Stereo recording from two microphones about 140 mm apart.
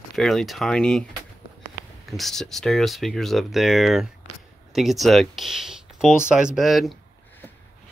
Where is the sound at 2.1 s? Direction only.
Centre (ahead or behind).